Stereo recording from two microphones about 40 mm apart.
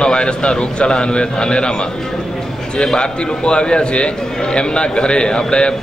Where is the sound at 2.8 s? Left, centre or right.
Left.